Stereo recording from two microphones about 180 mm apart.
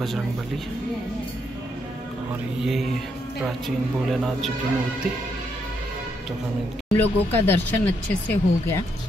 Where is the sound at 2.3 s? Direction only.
Centre (ahead or behind).